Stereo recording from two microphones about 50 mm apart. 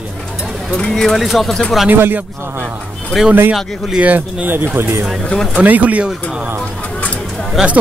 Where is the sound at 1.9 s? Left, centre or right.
Right.